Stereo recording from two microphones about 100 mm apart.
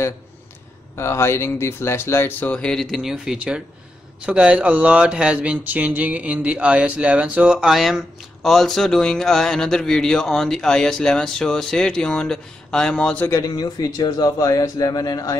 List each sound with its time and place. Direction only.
0.9 s speech: 25° left (ahead or behind)
2.6 s speech: 5° left (ahead or behind)
13.3 s speech: 40° left (ahead or behind)